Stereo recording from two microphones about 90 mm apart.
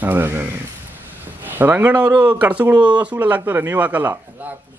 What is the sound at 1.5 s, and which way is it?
Speech, 20° right (ahead or behind).